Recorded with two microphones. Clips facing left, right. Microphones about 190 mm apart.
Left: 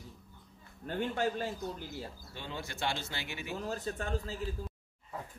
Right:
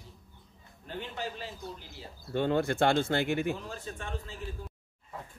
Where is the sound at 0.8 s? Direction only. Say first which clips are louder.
Left 5 dB; 50° left (ahead or behind).